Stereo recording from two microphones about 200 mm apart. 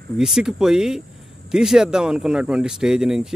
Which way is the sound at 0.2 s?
5° right (ahead or behind).